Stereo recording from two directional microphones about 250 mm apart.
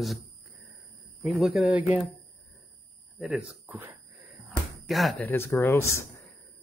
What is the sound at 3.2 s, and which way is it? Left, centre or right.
Speech, centre.